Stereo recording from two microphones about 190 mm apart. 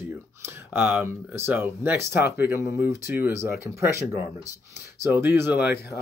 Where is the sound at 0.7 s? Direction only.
10° right (ahead or behind).